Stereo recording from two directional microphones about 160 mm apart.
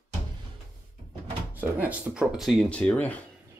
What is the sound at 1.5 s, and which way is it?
Speech, 10° right (ahead or behind).